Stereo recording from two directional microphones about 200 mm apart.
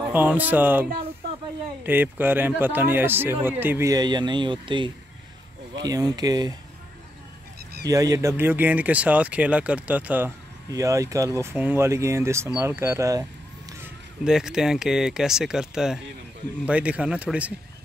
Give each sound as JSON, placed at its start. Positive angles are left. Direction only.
{"t": 0.1, "sound": "speech", "side_deg": -10}
{"t": 1.9, "sound": "speech", "side_deg": -10}
{"t": 7.9, "sound": "speech", "side_deg": -15}
{"t": 14.2, "sound": "speech", "side_deg": -5}